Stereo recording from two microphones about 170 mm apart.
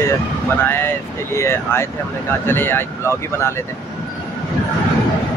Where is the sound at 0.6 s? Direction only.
15° left (ahead or behind).